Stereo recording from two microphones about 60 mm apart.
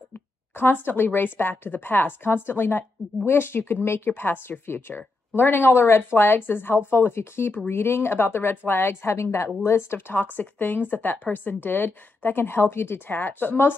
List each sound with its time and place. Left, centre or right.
0.6 s a woman's voice: left
9.9 s a woman's voice: left